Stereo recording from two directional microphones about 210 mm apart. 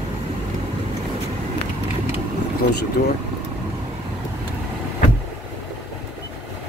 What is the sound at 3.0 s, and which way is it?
Speech, 45° left (ahead or behind).